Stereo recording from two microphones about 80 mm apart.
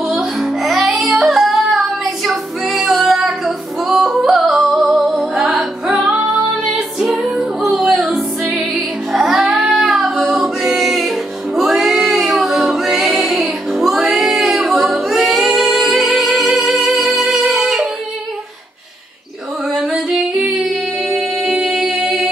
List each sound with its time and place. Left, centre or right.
0.0 s music: centre
7.2 s music: centre
8.0 s music: centre
8.4 s music: centre
19.7 s music: centre